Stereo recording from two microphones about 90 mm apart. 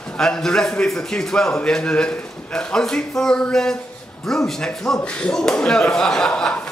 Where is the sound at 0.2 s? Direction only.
10° left (ahead or behind).